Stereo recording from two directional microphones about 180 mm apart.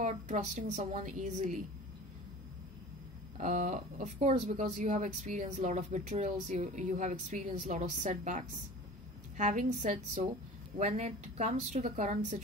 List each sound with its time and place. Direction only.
0.0 s a woman's voice: 40° right (ahead or behind)
3.3 s a woman's voice: 45° right (ahead or behind)